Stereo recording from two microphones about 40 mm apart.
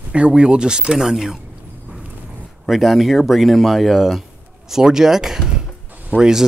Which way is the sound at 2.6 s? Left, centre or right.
Centre.